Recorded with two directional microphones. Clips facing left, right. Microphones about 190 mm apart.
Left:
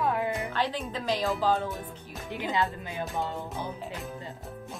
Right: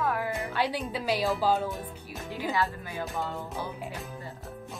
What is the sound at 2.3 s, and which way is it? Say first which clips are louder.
Speech: even; 20° left (ahead or behind).